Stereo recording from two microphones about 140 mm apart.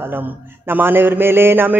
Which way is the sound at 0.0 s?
15° right (ahead or behind).